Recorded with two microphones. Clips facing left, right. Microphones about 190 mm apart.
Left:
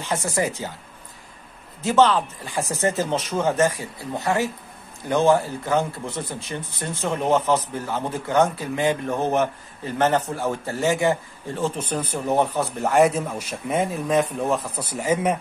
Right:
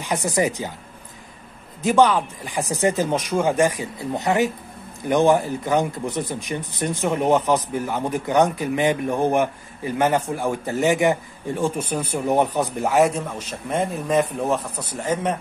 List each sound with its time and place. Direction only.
0.0 s speech: 15° right (ahead or behind)
1.8 s speech: 15° right (ahead or behind)
12.9 s a man's voice: centre (ahead or behind)